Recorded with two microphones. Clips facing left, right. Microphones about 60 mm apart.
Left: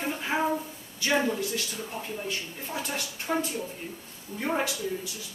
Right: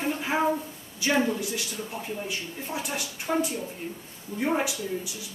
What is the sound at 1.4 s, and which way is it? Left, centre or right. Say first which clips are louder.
Speech: left 1 dB; centre.